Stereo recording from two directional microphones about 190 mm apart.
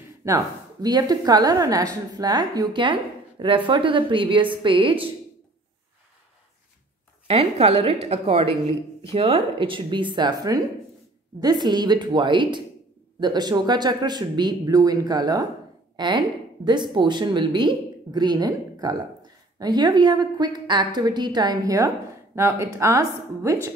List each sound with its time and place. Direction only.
0.2 s a woman's voice: 20° right (ahead or behind)
7.2 s a woman's voice: 30° right (ahead or behind); by 23.7 s 15° right (ahead or behind)